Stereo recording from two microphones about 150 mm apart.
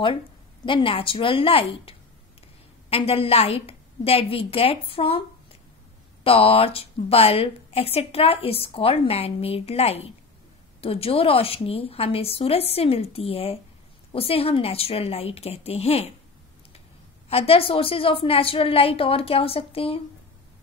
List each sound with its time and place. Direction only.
0.7 s a woman's voice: 35° left (ahead or behind)
17.3 s a woman's voice: 40° left (ahead or behind)